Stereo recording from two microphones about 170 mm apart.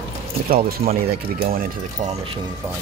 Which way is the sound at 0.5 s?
60° right (ahead or behind).